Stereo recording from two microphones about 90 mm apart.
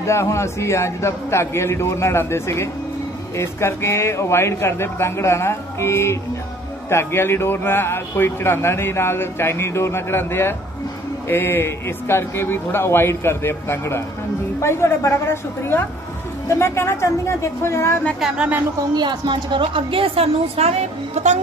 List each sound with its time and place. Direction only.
0.0 s a man's voice: 30° left (ahead or behind)
18.2 s speech: 15° right (ahead or behind)
18.9 s a woman's voice: 60° right (ahead or behind); by 20.2 s 85° right